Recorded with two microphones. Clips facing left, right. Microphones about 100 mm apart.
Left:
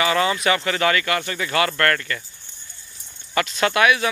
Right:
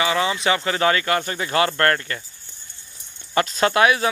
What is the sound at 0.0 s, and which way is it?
Speech, 15° right (ahead or behind).